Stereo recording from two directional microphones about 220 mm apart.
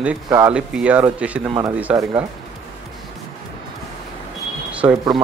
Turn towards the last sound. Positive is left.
turn(degrees=-10)  # may be behind; listen again after turning